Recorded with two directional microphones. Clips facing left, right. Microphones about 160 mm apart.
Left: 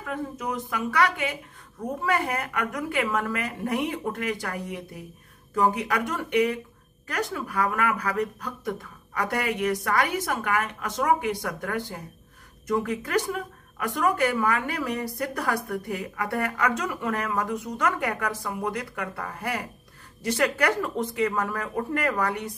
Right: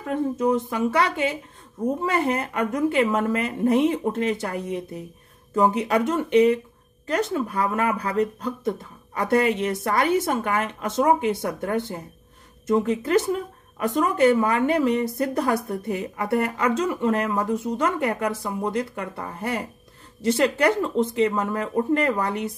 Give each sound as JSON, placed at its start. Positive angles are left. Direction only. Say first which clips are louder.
{"t": 0.0, "sound": "speech", "louder": "right 9 dB", "side_deg": -25}